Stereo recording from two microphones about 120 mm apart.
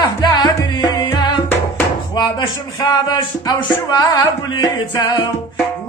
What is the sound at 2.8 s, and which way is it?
Speech, 35° left (ahead or behind).